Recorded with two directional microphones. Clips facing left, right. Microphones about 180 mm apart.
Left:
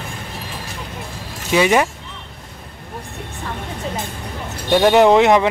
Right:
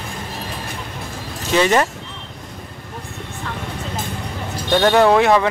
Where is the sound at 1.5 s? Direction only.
10° left (ahead or behind).